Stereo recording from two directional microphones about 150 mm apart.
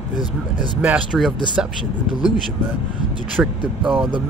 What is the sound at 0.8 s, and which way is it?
Speech, 5° right (ahead or behind).